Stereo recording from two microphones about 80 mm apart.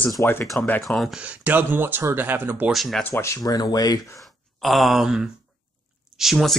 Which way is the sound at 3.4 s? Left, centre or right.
Left.